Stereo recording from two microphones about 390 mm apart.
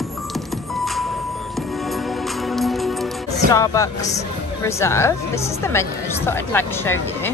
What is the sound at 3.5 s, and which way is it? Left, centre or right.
Speech, centre.